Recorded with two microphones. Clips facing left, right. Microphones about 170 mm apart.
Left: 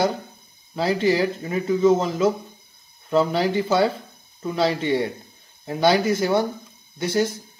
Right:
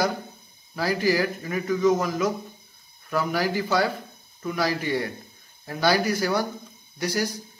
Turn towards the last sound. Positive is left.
turn(degrees=25)  # may be behind; listen again after turning